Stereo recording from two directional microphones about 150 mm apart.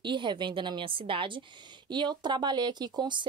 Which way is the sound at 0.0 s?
30° right (ahead or behind).